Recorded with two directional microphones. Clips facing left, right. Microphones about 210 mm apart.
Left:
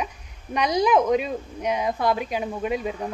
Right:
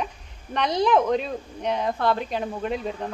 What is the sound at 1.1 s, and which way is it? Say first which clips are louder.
A woman's voice: left 2 dB; 5° left (ahead or behind).